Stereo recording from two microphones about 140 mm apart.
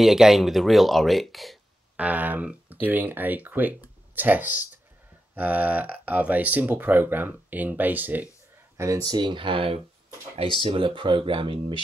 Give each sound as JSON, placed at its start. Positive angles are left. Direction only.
{"t": 0.0, "sound": "speech", "side_deg": 0}
{"t": 2.0, "sound": "speech", "side_deg": -10}
{"t": 8.7, "sound": "speech", "side_deg": -25}